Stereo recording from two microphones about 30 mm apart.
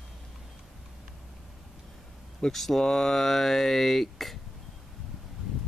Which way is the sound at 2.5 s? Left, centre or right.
Centre.